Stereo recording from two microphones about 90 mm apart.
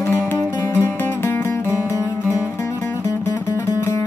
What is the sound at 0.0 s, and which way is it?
Music, 25° left (ahead or behind).